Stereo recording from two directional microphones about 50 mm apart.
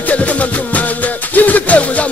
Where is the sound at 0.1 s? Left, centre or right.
Left.